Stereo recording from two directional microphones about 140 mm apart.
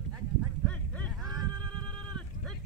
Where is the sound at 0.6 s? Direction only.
10° left (ahead or behind).